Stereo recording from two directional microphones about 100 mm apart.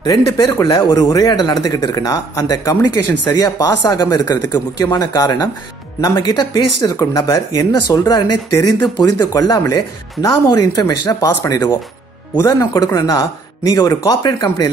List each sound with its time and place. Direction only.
0.0 s speech: 50° left (ahead or behind)
0.5 s speech: 30° left (ahead or behind)
0.7 s speech: 50° left (ahead or behind)